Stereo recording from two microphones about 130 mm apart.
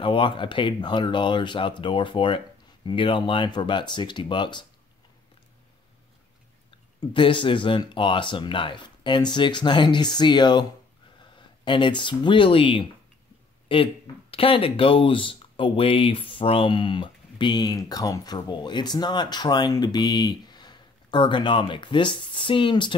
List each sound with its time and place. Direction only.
0.0 s speech: 40° left (ahead or behind)
6.7 s speech: 40° left (ahead or behind)